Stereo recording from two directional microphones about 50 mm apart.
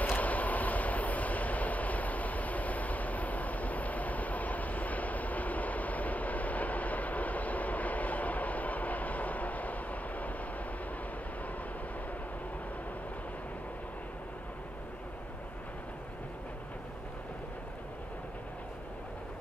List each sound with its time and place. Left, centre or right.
0.0 s train: left